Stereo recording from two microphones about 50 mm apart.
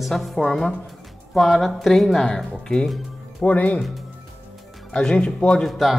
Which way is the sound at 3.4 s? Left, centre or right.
Left.